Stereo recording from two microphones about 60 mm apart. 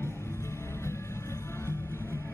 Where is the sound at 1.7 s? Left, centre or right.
Left.